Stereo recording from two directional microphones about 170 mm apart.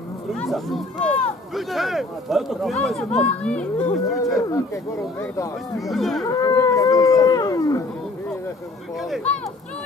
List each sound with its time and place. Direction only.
0.3 s speech: centre (ahead or behind)
4.2 s speech: 20° left (ahead or behind)
5.8 s speech: centre (ahead or behind)
6.2 s speech: 20° left (ahead or behind)